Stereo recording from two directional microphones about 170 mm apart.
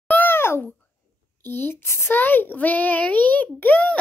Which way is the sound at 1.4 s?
10° left (ahead or behind).